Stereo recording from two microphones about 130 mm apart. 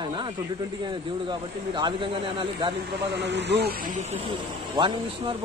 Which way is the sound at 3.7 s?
80° right.